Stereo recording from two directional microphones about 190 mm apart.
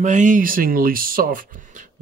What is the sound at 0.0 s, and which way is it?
Speech, 40° right (ahead or behind).